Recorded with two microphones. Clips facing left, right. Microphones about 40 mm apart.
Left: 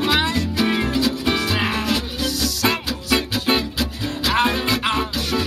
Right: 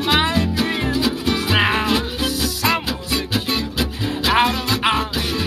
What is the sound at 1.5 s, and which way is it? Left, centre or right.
Music, right.